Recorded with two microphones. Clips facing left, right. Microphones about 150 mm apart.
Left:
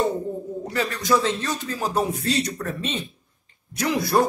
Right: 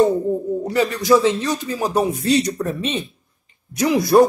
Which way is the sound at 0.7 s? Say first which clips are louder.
Right 6 dB; 15° right (ahead or behind).